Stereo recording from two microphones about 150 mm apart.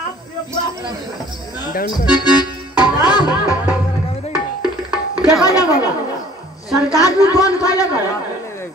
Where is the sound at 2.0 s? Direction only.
30° left (ahead or behind).